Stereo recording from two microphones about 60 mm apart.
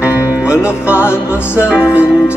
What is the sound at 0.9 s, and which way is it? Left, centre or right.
Music, left.